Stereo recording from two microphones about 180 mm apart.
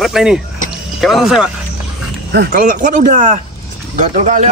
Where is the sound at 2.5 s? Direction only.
45° right (ahead or behind).